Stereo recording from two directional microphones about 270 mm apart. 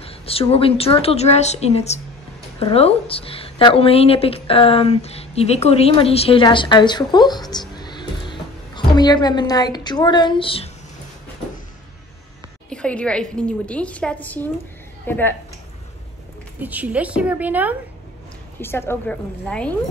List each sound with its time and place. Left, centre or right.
0.0 s speech: left
7.7 s a sound: centre
12.6 s a woman's voice: centre
16.6 s a woman's voice: centre
18.6 s a woman's voice: centre